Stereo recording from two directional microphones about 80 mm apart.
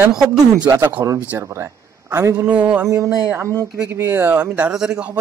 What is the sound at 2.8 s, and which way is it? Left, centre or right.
Speech, right.